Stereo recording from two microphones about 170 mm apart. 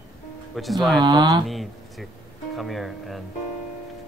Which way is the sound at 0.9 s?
25° right (ahead or behind).